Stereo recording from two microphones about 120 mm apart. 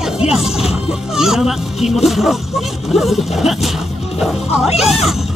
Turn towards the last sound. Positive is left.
turn(degrees=0)  # may be behind; listen again after turning